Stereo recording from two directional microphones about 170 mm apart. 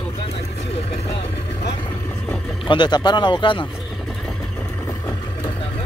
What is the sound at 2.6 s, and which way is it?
Speech, 25° left (ahead or behind).